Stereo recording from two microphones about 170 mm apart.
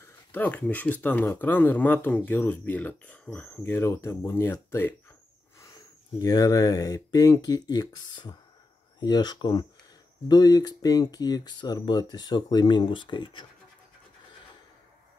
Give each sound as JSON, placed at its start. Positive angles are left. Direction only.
{"t": 0.0, "sound": "speech", "side_deg": 10}
{"t": 6.2, "sound": "speech", "side_deg": 20}